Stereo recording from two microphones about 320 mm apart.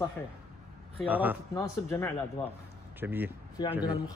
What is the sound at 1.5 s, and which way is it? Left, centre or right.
Speech, centre.